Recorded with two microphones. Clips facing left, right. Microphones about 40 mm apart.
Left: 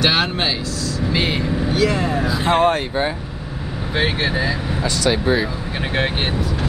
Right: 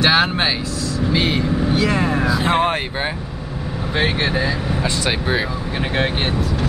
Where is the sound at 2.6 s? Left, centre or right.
Right.